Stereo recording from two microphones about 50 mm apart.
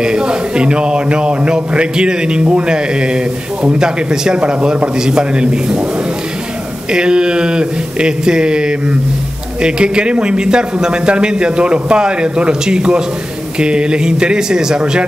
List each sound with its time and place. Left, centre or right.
0.0 s a man's voice: centre
6.9 s a man's voice: centre